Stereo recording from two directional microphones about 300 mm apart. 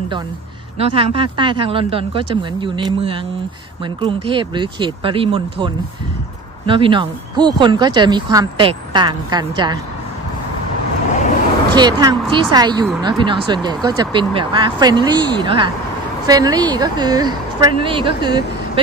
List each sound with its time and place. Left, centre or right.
0.7 s speech: centre
11.7 s speech: centre